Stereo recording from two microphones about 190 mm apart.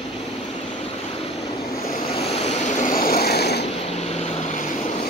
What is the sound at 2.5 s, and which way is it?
Vehicle, 40° left (ahead or behind).